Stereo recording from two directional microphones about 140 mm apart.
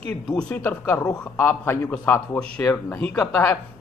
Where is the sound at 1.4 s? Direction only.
15° left (ahead or behind).